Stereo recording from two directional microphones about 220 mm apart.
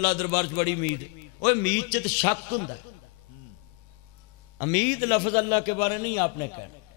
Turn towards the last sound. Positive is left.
turn(degrees=15)  # may be behind; listen again after turning